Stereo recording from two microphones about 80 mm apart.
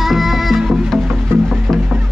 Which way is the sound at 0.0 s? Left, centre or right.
Centre.